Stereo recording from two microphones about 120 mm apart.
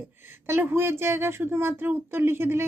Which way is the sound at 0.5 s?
20° right (ahead or behind).